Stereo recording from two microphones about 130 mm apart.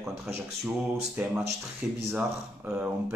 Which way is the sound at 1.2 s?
10° right (ahead or behind).